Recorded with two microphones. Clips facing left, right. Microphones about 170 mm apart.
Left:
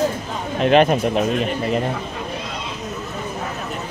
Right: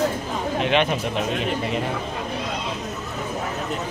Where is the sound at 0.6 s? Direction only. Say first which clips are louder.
Left 7 dB; 40° left (ahead or behind).